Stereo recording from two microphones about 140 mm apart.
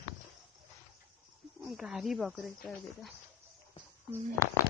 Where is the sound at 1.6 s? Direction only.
5° right (ahead or behind).